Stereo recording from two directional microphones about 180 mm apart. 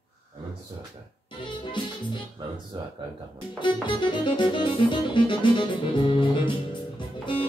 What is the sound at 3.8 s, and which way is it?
Music, 25° left (ahead or behind).